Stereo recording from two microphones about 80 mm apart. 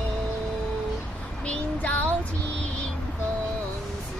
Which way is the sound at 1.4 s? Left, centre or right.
Centre.